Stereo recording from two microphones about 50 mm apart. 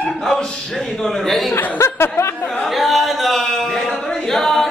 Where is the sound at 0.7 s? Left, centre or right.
Centre.